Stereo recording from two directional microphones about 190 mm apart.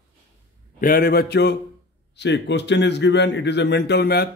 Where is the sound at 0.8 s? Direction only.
50° left (ahead or behind).